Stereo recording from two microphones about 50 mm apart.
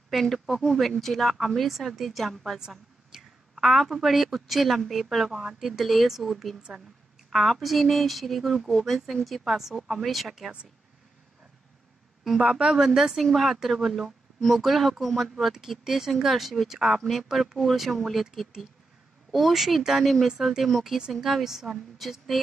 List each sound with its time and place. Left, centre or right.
0.1 s a woman's voice: centre
12.4 s a woman's voice: centre